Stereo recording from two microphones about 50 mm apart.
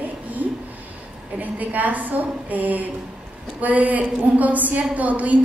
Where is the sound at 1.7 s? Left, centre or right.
Right.